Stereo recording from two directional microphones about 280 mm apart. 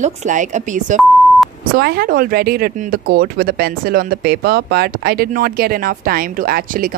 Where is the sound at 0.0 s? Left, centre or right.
Right.